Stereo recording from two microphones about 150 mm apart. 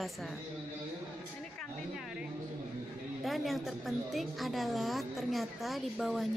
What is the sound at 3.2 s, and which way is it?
A woman's voice, centre (ahead or behind).